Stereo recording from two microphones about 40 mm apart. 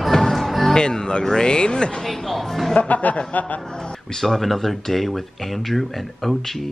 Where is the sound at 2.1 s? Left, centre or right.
Centre.